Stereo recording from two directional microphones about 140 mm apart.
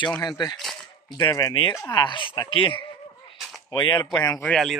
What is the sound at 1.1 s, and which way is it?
Speech, 25° left (ahead or behind).